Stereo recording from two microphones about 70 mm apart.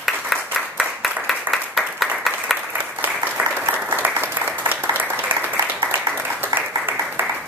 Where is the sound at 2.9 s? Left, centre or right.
Right.